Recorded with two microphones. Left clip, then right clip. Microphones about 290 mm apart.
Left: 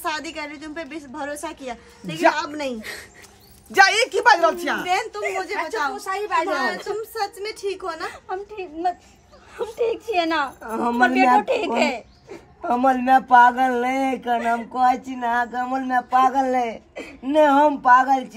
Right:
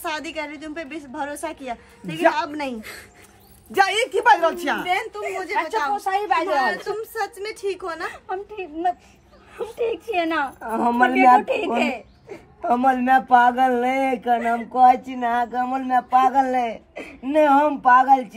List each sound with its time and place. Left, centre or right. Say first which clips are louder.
0.0 s a woman's voice: even; centre
3.7 s a woman's voice: left 3 dB; centre
5.9 s a woman's voice: right 4 dB; centre
6.5 s a woman's voice: right 2 dB; centre